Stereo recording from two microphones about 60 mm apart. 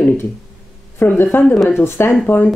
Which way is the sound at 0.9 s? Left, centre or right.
Left.